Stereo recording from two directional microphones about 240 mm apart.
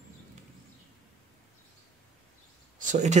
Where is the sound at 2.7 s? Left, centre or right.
Right.